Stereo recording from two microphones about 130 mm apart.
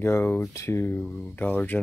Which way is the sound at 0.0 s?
15° left (ahead or behind).